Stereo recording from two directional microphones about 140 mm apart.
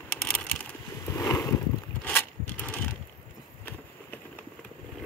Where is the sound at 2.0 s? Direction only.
15° left (ahead or behind).